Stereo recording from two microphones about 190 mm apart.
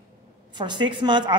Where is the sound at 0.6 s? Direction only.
25° right (ahead or behind).